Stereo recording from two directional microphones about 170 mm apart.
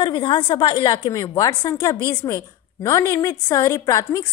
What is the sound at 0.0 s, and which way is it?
A woman's voice, 30° left (ahead or behind).